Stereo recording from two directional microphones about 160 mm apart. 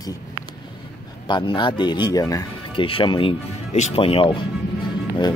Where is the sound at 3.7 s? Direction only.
45° left (ahead or behind).